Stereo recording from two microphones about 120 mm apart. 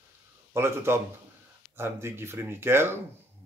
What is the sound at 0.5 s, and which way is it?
Speech, 20° right (ahead or behind).